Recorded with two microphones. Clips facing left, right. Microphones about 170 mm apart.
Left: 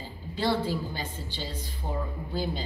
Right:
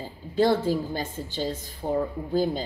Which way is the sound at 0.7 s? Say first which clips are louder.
Right 6 dB; 45° right (ahead or behind).